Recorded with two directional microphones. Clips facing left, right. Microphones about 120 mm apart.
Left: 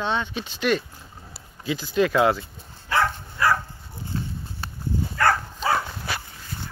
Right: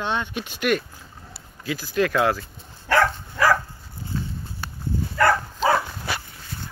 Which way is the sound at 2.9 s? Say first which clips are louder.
Right 3 dB; 90° right.